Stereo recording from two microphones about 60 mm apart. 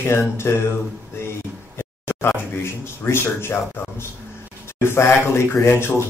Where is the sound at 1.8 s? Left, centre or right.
Left.